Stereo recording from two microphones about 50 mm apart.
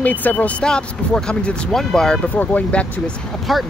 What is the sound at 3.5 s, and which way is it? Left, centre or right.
Speech, centre.